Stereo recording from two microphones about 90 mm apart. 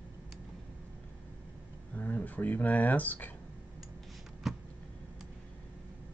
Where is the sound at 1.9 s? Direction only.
20° left (ahead or behind).